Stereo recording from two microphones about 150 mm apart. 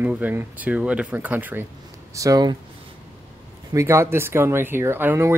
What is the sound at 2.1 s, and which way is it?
Speech, 25° right (ahead or behind).